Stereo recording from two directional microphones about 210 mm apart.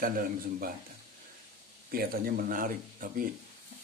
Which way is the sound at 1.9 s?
45° right (ahead or behind).